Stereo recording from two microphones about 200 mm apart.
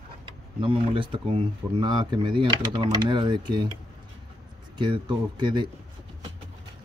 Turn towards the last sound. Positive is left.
turn(degrees=-25)  # may be behind; listen again after turning